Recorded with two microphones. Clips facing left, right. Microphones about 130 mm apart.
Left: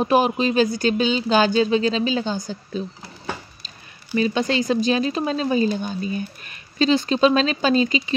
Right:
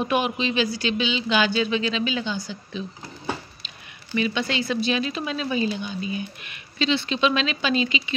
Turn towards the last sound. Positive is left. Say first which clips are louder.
# left 5 dB
turn(degrees=40)  # may be behind; listen again after turning